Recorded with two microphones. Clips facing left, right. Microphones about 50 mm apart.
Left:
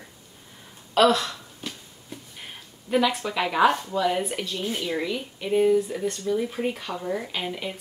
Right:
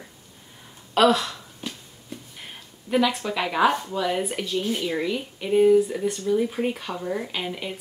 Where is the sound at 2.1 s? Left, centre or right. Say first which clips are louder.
Right 1 dB; centre.